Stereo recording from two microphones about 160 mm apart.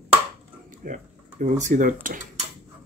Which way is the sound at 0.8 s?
55° right (ahead or behind).